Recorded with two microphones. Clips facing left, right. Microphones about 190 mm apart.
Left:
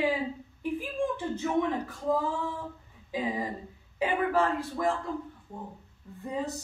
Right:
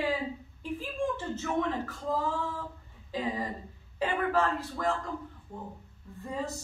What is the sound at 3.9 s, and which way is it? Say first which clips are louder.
Speech: left 2 dB; 10° left (ahead or behind).